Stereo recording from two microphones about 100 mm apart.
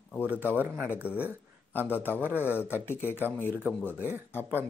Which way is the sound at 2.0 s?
20° right (ahead or behind).